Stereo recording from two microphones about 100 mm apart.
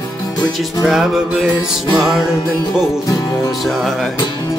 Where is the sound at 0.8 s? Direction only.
Centre (ahead or behind).